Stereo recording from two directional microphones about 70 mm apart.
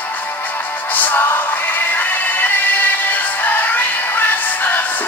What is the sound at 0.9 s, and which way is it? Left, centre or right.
Music, left.